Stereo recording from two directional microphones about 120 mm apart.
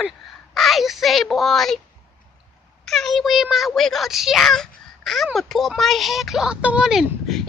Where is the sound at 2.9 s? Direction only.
Centre (ahead or behind).